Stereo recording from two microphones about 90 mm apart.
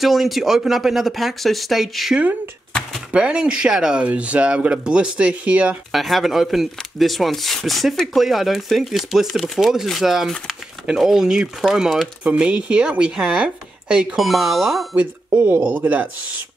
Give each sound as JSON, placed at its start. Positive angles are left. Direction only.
{"t": 0.0, "sound": "speech", "side_deg": 0}
{"t": 3.1, "sound": "speech", "side_deg": -10}
{"t": 5.9, "sound": "speech", "side_deg": 0}
{"t": 15.2, "sound": "speech", "side_deg": -30}